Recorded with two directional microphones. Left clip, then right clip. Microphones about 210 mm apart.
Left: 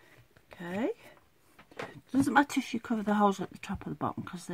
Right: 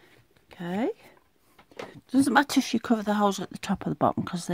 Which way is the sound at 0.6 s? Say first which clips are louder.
Right 4 dB; 50° right (ahead or behind).